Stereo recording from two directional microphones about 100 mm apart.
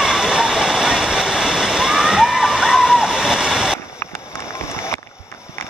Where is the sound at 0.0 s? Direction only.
5° right (ahead or behind).